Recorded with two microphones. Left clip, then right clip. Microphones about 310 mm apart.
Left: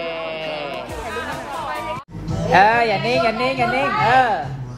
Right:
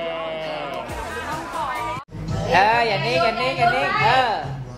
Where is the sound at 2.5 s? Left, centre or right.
Left.